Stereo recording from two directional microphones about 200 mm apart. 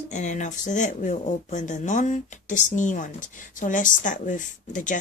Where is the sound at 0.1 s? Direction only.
35° left (ahead or behind).